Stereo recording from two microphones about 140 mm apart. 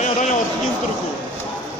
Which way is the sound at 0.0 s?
60° left (ahead or behind).